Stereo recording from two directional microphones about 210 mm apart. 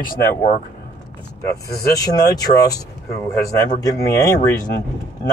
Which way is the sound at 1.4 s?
15° left (ahead or behind).